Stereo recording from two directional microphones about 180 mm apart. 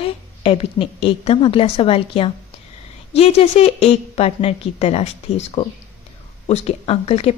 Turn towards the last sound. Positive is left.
turn(degrees=35)  # may be behind; listen again after turning